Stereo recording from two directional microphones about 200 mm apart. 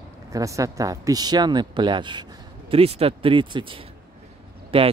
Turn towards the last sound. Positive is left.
turn(degrees=-25)  # may be behind; listen again after turning